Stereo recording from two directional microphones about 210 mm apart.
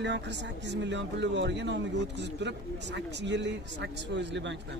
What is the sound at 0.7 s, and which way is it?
Speech, 60° right (ahead or behind).